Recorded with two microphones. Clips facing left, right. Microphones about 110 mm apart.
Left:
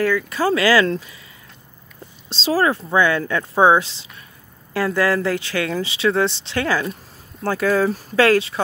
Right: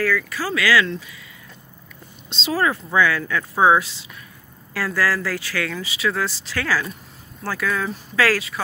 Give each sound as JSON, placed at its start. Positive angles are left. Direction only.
{"t": 0.0, "sound": "speech", "side_deg": 25}
{"t": 0.5, "sound": "speech", "side_deg": 35}
{"t": 2.2, "sound": "speech", "side_deg": 30}